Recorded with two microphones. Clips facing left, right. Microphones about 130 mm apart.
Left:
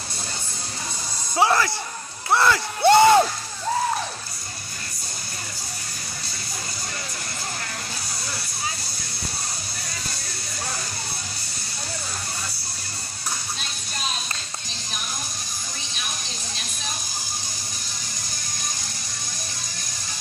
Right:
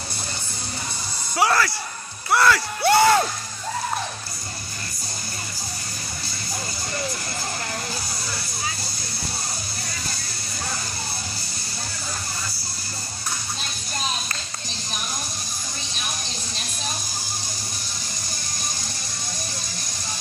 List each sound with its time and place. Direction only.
1.3 s speech: 20° left (ahead or behind)